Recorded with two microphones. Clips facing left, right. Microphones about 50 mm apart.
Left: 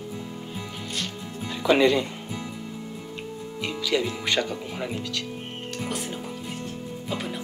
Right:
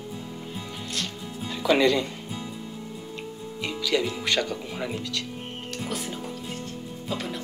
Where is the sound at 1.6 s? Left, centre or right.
Centre.